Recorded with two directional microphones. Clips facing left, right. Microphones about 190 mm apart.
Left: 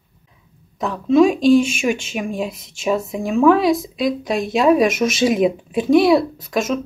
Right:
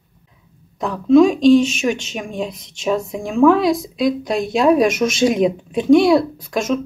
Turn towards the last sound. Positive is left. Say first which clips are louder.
# right 1 dB
turn(degrees=0)  # may be behind; listen again after turning